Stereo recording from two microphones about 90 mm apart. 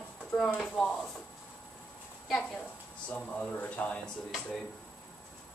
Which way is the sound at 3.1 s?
15° left (ahead or behind).